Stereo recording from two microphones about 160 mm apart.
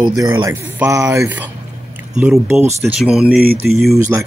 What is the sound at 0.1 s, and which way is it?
Speech, 20° right (ahead or behind).